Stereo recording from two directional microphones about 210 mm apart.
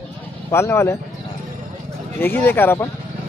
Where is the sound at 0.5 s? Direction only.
10° left (ahead or behind).